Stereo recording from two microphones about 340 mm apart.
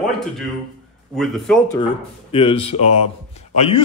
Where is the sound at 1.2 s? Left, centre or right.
Centre.